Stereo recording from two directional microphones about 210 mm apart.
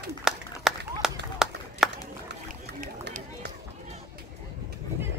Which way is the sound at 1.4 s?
5° right (ahead or behind).